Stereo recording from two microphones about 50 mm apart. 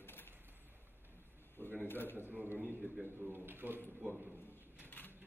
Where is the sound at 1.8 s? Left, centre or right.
Left.